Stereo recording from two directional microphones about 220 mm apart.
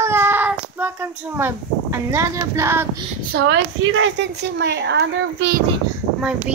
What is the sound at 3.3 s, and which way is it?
A woman's voice, 55° right (ahead or behind).